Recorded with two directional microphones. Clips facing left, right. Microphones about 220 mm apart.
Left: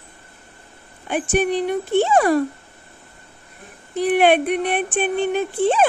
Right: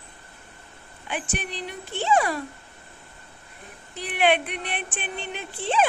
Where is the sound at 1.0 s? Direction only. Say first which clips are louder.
Left 12 dB; 50° left (ahead or behind).